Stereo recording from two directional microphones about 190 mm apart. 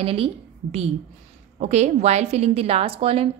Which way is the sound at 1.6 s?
35° right (ahead or behind).